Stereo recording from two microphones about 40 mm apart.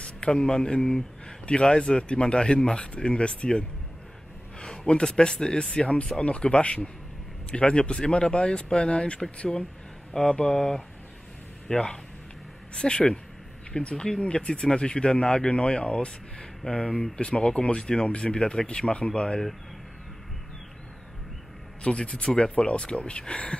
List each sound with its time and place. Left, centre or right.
0.0 s speech: left
10.3 s speech: left
21.8 s speech: left